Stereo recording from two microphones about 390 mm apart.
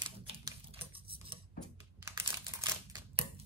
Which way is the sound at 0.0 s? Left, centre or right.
Centre.